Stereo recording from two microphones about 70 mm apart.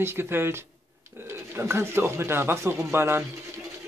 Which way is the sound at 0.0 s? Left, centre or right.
Right.